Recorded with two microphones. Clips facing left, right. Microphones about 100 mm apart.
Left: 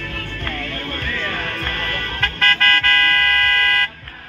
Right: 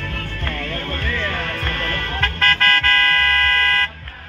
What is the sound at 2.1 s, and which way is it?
Vehicle, 20° right (ahead or behind).